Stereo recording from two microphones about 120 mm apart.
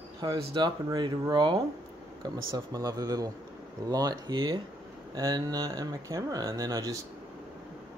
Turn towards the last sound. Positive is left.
turn(degrees=-30)  # may be behind; listen again after turning